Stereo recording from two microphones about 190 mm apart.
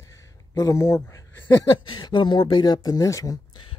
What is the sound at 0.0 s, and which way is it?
Speech, 15° left (ahead or behind).